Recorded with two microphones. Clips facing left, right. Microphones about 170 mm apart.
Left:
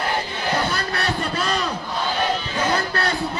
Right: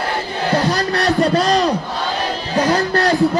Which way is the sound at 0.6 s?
35° right (ahead or behind).